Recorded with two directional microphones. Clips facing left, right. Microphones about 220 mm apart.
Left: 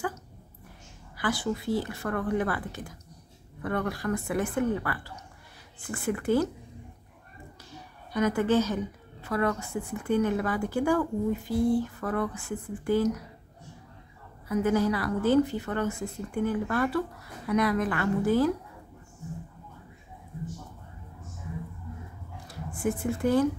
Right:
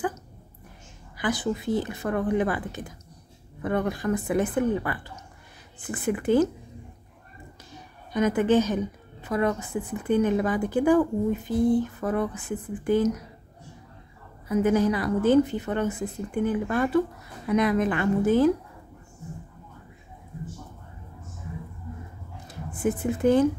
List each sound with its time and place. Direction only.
1.1 s a woman's voice: 20° right (ahead or behind)
8.1 s a woman's voice: 20° right (ahead or behind)
14.5 s a woman's voice: 20° right (ahead or behind)
22.5 s speech: 20° right (ahead or behind)